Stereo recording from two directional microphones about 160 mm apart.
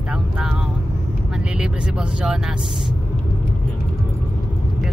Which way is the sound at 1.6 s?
5° right (ahead or behind).